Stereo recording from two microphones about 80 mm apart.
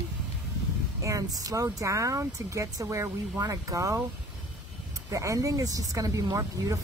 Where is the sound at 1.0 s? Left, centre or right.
Right.